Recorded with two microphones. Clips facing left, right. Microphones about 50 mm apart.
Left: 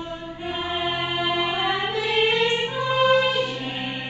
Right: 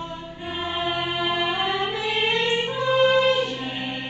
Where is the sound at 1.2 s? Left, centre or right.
Centre.